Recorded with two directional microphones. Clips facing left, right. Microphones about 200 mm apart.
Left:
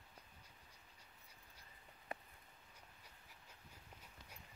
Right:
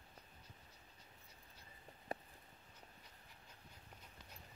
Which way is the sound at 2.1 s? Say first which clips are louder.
Right 4 dB; 35° right (ahead or behind).